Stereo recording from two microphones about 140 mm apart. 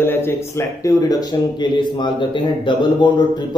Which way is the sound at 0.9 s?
25° left (ahead or behind).